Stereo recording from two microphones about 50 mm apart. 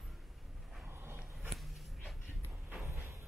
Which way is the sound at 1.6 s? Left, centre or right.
Centre.